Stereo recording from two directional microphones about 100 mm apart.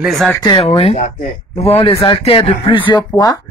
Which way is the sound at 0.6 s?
85° left.